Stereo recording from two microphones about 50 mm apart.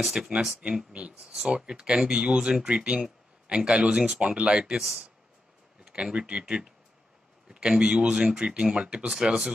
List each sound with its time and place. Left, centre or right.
0.0 s speech: centre
0.6 s speech: right
5.9 s a sound: centre
6.1 s speech: right
6.4 s speech: centre